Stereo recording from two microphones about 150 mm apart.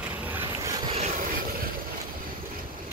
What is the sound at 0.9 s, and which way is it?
Vehicle, 55° right (ahead or behind).